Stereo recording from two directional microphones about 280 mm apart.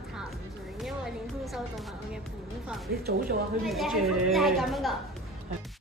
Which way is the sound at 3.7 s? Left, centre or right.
Centre.